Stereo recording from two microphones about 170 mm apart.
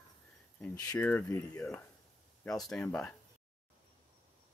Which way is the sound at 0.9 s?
10° left (ahead or behind).